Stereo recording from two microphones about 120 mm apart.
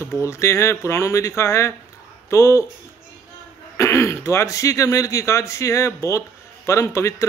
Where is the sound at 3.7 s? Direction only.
25° left (ahead or behind).